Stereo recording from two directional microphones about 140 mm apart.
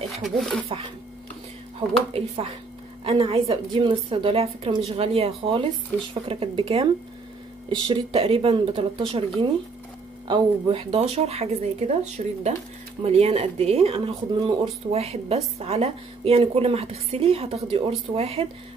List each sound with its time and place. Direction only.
0.1 s speech: centre (ahead or behind)
2.1 s a woman's voice: 45° right (ahead or behind)